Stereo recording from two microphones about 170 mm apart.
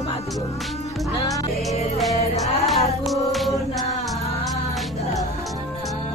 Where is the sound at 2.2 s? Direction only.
35° left (ahead or behind).